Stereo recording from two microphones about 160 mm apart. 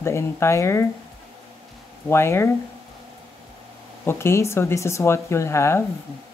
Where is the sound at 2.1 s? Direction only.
15° left (ahead or behind).